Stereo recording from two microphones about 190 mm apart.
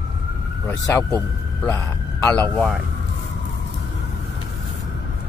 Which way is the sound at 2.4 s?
5° left (ahead or behind).